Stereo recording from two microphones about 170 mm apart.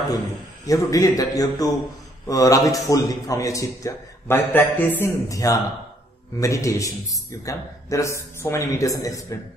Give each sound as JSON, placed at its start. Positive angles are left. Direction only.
{"t": 0.7, "sound": "a man's voice", "side_deg": 20}